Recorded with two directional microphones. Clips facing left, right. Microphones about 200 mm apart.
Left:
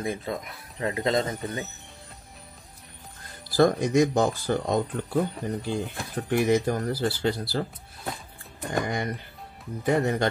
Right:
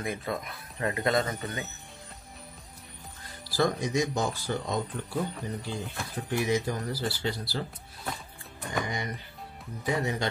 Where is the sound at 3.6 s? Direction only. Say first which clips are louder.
Left 7 dB; 55° left (ahead or behind).